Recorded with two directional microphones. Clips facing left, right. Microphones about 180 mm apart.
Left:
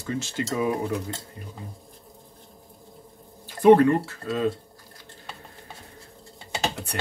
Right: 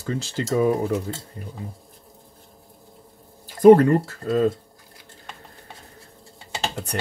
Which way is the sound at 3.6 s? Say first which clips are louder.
Right 3 dB; 40° right (ahead or behind).